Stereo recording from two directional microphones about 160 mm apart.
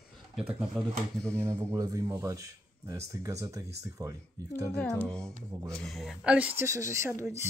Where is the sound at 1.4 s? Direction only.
20° right (ahead or behind).